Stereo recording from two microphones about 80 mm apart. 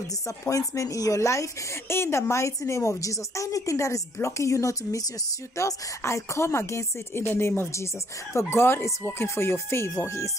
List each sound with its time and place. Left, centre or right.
0.5 s speech: left